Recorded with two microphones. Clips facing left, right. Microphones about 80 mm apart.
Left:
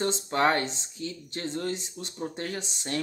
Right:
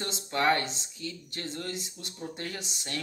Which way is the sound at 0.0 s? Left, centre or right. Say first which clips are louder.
Left 4 dB; left.